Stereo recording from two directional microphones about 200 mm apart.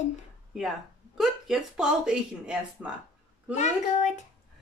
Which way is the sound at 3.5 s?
35° left (ahead or behind).